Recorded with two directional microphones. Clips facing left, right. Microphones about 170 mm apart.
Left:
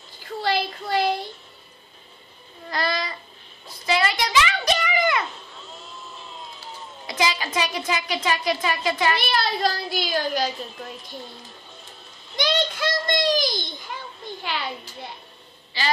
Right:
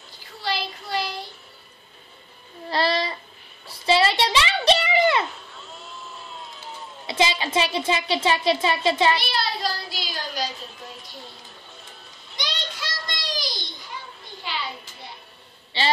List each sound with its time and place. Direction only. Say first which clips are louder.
0.4 s child singing: left 4 dB; 50° left (ahead or behind)
2.7 s a sound: right 3 dB; 30° right (ahead or behind)
7.1 s a woman's voice: right 2 dB; 25° right (ahead or behind)
9.2 s speech: left 4 dB; 50° left (ahead or behind)
12.4 s child singing: left 10 dB; 55° left (ahead or behind)
13.9 s a sound: left 2 dB; 65° left (ahead or behind)
15.7 s a woman's voice: right 2 dB; 30° right (ahead or behind)